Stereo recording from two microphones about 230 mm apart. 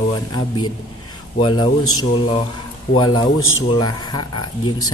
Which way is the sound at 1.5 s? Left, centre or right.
Left.